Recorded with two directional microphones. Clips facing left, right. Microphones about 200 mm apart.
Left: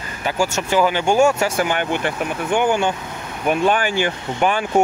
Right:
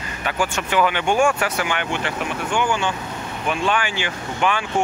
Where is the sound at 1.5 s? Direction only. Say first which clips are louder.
Left 4 dB; 45° left (ahead or behind).